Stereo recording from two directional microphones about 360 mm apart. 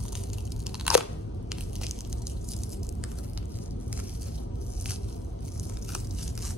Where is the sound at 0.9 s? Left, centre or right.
Centre.